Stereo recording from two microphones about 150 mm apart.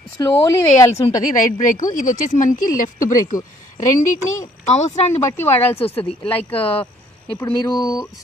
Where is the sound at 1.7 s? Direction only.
60° left (ahead or behind).